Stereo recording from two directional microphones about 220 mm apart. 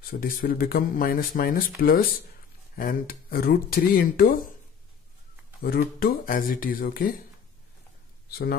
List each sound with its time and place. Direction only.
0.1 s speech: 40° left (ahead or behind)
5.6 s speech: 40° left (ahead or behind)
8.3 s speech: 45° left (ahead or behind)